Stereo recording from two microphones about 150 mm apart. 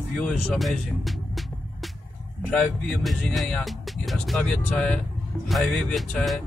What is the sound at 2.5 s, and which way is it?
Speech, centre (ahead or behind).